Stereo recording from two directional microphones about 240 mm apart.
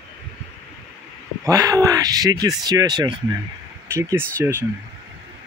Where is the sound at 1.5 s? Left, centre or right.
Centre.